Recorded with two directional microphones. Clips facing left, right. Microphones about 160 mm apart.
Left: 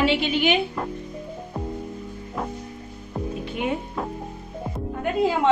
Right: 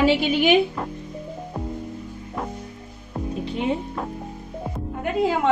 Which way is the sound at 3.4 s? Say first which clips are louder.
Right 3 dB; 30° right (ahead or behind).